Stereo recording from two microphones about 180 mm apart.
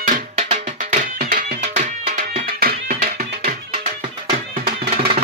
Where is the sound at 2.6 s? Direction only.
55° right (ahead or behind).